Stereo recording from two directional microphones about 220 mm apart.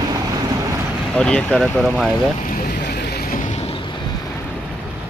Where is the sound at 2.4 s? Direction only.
40° left (ahead or behind).